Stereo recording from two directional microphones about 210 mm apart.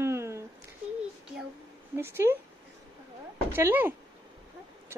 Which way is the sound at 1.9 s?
10° right (ahead or behind).